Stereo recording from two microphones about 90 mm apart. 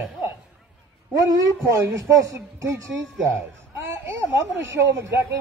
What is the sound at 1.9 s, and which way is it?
Speech, 40° right (ahead or behind).